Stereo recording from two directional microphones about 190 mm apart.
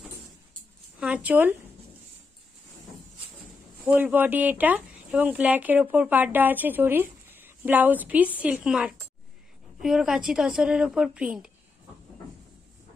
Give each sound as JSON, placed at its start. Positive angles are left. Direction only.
{"t": 0.9, "sound": "speech", "side_deg": -5}
{"t": 3.8, "sound": "a woman's voice", "side_deg": -10}